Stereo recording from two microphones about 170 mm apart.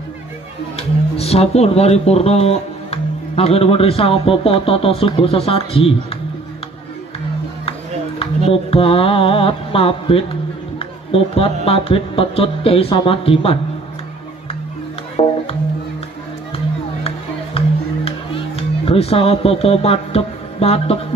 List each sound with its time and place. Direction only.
0.7 s speech: 35° left (ahead or behind)
8.5 s speech: 35° left (ahead or behind)
17.6 s music: 35° left (ahead or behind)